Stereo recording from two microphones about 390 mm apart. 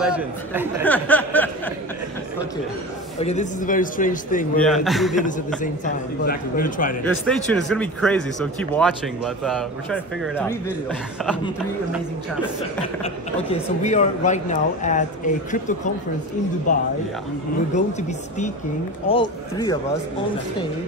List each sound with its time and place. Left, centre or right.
0.0 s speech: centre
3.2 s speech: centre
4.6 s speech: centre
6.2 s speech: left
7.2 s speech: centre
12.8 s speech: centre
16.7 s speech: centre